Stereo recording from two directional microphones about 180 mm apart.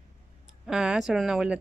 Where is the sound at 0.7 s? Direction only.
5° right (ahead or behind).